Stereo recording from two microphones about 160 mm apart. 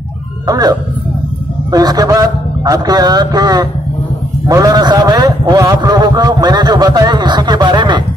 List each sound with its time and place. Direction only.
0.5 s a man's voice: 25° right (ahead or behind)